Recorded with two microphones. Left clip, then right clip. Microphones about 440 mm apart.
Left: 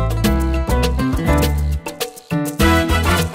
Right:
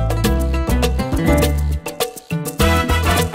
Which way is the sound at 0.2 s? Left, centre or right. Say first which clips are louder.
Left 1 dB; right.